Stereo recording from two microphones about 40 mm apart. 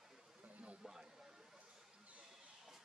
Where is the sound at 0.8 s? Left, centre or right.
Centre.